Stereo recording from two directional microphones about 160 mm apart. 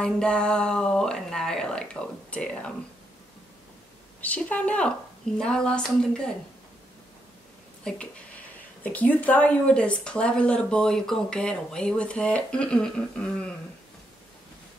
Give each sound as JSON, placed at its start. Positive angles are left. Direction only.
{"t": 0.0, "sound": "a woman's voice", "side_deg": 5}
{"t": 4.2, "sound": "a woman's voice", "side_deg": 10}
{"t": 7.8, "sound": "speech", "side_deg": 5}